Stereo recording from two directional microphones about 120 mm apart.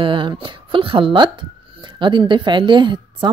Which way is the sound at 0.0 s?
45° right (ahead or behind).